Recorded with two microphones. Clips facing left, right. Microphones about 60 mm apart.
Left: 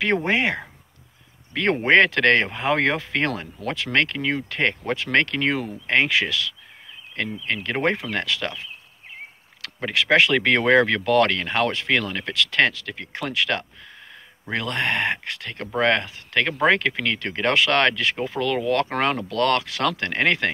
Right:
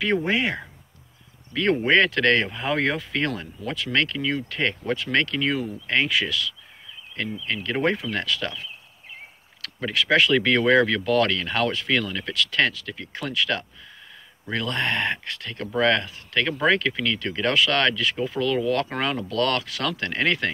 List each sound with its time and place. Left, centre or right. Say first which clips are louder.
0.0 s speech: left 2 dB; left
7.4 s speech: even; left
9.9 s speech: left 1 dB; left
11.7 s speech: left 1 dB; left
19.3 s speech: left 1 dB; left